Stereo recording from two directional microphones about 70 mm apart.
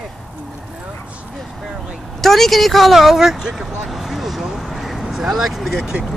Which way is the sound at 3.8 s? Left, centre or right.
Centre.